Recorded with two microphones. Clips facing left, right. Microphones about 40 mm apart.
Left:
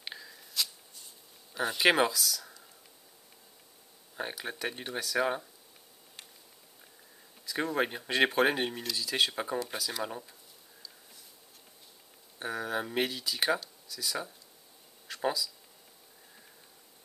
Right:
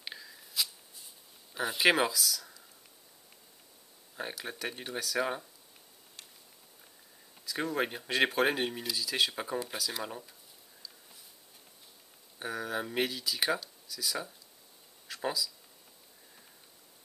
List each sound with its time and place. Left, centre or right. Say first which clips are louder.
0.0 s shuffling cards: left 1 dB; centre
4.2 s speech: left 2 dB; centre
7.4 s speech: left 2 dB; centre
12.4 s speech: left 2 dB; centre